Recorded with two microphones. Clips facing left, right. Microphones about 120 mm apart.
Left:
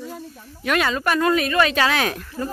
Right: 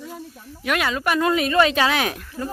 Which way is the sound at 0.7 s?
5° right (ahead or behind).